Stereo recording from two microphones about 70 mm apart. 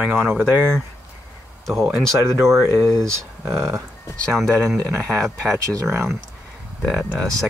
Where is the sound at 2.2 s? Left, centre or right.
Right.